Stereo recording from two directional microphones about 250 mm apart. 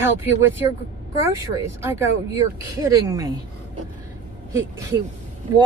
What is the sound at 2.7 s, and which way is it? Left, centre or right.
Speech, centre.